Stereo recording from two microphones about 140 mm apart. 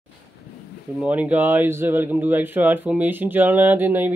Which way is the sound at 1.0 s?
10° right (ahead or behind).